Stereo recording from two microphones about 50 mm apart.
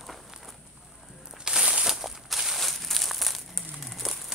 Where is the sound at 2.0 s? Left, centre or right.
Centre.